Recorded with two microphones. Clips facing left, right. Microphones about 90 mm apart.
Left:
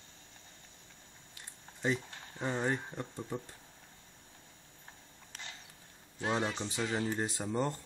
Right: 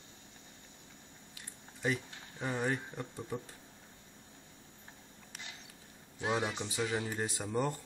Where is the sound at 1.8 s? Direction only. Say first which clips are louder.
Left 1 dB; 20° left (ahead or behind).